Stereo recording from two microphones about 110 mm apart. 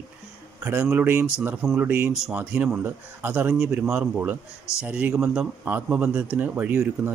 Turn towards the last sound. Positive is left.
turn(degrees=-20)  # may be behind; listen again after turning